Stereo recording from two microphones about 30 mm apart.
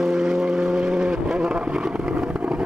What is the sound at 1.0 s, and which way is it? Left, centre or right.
Vehicle, right.